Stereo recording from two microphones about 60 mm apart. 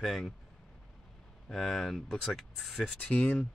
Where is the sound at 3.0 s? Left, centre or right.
Centre.